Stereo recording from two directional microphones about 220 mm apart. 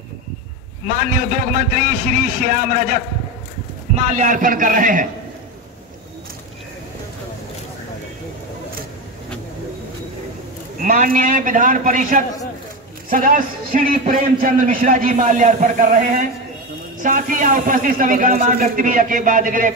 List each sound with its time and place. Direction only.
0.8 s a man's voice: 40° right (ahead or behind)
4.0 s a man's voice: 35° right (ahead or behind)
10.8 s a man's voice: 35° right (ahead or behind)